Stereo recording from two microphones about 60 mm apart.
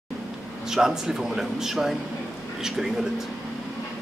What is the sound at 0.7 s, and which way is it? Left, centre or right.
A man's voice, centre.